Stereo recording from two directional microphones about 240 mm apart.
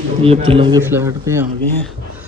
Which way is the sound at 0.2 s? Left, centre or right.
Right.